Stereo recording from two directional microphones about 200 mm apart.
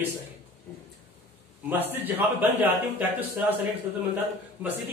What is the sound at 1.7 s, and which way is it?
A man's voice, 10° right (ahead or behind).